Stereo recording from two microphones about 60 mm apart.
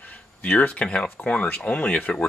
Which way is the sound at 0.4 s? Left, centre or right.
Left.